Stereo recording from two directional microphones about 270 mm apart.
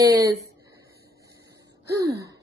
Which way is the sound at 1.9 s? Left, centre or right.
Centre.